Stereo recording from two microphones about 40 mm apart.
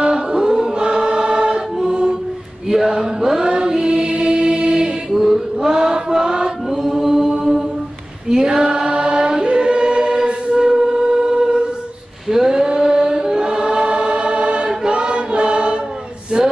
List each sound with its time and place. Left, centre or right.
0.0 s choir: centre
2.7 s chant: centre
5.1 s mantra: centre
5.7 s chant: centre
6.7 s chant: centre
8.3 s choir: centre
16.4 s a sound: centre